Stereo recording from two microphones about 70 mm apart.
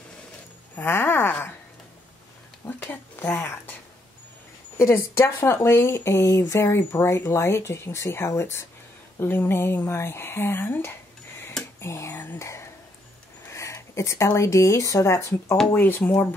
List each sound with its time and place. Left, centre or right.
0.7 s speech: left
2.8 s speech: left
4.7 s speech: left
13.5 s speech: left
15.7 s speech: left